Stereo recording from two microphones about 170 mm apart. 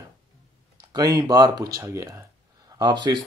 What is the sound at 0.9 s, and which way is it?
Speech, 20° right (ahead or behind).